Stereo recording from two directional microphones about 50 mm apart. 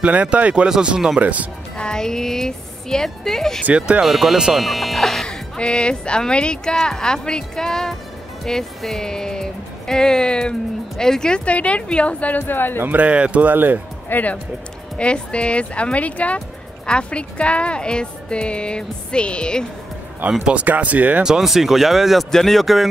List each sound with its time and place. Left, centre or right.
0.0 s speech: right
0.7 s speech: centre
1.2 s speech: right
1.8 s speech: centre
3.6 s speech: right
4.0 s speech: centre; by 12.7 s left
12.9 s speech: right
14.0 s speech: left
15.0 s speech: left
20.4 s speech: right
21.2 s speech: centre